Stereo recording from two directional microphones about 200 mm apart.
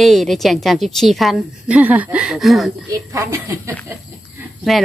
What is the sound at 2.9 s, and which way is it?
Speech, 15° right (ahead or behind).